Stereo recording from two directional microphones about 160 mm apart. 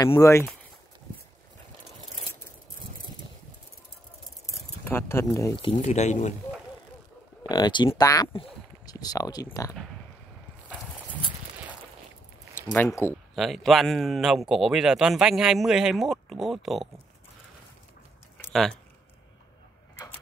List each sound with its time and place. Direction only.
0.0 s speech: 20° left (ahead or behind)
4.8 s speech: 15° left (ahead or behind)
5.7 s speech: 45° left (ahead or behind)
7.4 s speech: 25° left (ahead or behind)
8.3 s speech: 35° left (ahead or behind)
8.8 s speech: 25° left (ahead or behind)
12.7 s speech: 15° left (ahead or behind)
13.3 s speech: centre (ahead or behind)
18.5 s speech: centre (ahead or behind)